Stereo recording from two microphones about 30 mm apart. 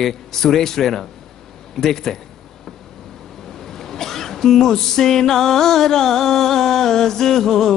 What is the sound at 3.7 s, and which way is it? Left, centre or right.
Music, centre.